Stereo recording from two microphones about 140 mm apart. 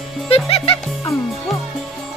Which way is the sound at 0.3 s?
45° left (ahead or behind).